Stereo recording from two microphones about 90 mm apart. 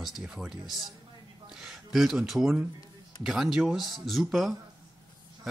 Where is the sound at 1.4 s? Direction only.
5° right (ahead or behind).